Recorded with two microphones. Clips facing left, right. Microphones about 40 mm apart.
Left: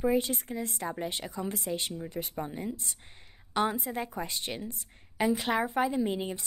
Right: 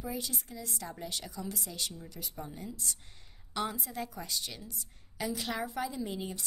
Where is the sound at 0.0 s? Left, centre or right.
Left.